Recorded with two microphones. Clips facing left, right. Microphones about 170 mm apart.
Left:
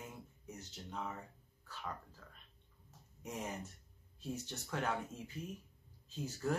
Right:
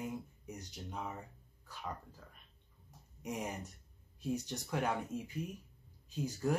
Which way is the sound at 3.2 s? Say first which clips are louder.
Right 3 dB; 15° right (ahead or behind).